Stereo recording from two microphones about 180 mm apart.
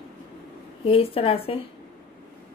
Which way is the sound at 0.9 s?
30° left (ahead or behind).